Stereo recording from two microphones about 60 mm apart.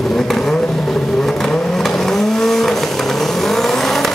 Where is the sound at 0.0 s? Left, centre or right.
Centre.